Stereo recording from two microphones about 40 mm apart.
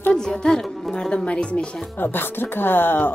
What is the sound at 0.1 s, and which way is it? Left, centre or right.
Music, centre.